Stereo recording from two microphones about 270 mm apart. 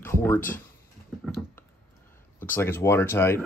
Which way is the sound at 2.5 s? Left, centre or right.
Centre.